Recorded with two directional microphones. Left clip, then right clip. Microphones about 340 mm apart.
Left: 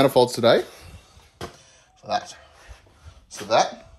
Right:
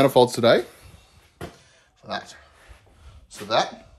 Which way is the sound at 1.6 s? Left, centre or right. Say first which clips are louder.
Left 3 dB; centre.